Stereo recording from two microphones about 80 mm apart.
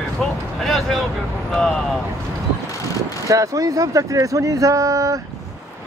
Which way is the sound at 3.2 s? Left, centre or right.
Right.